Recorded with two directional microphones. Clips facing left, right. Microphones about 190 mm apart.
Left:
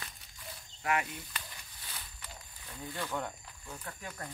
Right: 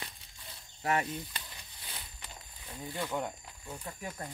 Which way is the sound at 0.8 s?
30° right (ahead or behind).